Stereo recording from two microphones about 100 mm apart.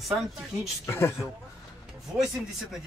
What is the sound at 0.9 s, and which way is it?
Speech, 25° left (ahead or behind).